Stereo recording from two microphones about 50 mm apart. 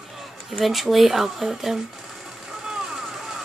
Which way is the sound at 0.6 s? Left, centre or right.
Centre.